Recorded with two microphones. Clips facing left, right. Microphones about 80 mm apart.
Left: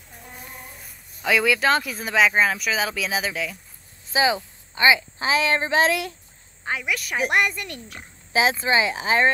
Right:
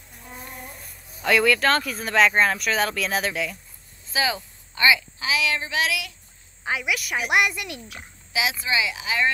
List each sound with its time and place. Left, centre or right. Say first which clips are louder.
1.2 s speech: right 1 dB; centre
4.1 s a woman's voice: left 4 dB; left
6.6 s speech: right 1 dB; centre
8.3 s speech: left 5 dB; left